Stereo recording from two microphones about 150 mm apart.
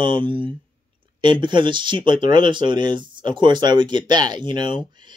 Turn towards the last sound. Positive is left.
turn(degrees=-30)  # may be behind; listen again after turning